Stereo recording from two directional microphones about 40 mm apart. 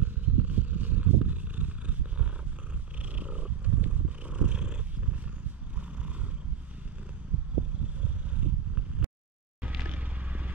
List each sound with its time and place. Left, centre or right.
0.0 s purr: right
8.0 s a sound: right
9.6 s vehicle: right